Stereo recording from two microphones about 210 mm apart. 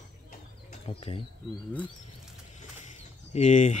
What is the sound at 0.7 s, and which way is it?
Speech, 30° left (ahead or behind).